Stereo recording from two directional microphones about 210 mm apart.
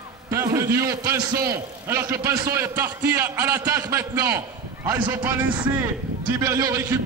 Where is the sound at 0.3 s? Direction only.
15° right (ahead or behind).